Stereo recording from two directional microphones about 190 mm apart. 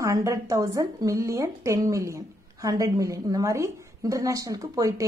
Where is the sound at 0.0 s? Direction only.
15° right (ahead or behind).